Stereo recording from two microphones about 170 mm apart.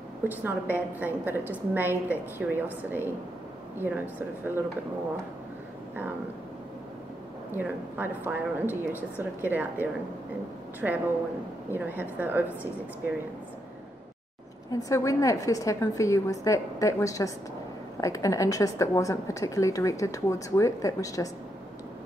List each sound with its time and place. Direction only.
0.3 s a woman's voice: 10° right (ahead or behind)
7.5 s a woman's voice: 10° right (ahead or behind)
14.7 s a woman's voice: 20° left (ahead or behind)